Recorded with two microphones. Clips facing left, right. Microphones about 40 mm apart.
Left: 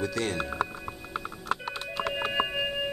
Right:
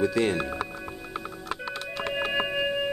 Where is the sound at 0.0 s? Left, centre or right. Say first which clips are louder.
Right 6 dB; centre.